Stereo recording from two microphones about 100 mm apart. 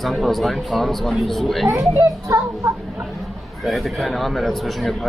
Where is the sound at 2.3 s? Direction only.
30° right (ahead or behind).